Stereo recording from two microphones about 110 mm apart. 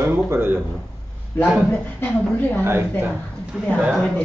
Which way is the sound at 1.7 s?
15° left (ahead or behind).